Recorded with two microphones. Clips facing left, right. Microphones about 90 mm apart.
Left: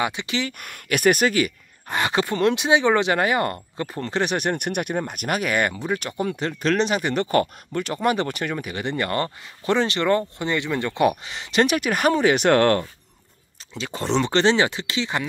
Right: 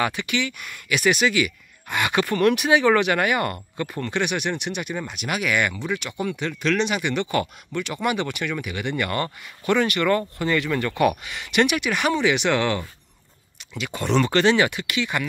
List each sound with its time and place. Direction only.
0.0 s speech: 20° left (ahead or behind)
0.4 s speech: 45° left (ahead or behind)
13.7 s speech: 30° left (ahead or behind)